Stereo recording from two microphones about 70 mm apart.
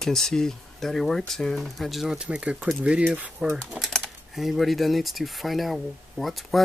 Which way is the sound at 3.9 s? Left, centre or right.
Centre.